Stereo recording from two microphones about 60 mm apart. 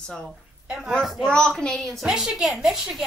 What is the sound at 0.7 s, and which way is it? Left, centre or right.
Speech, centre.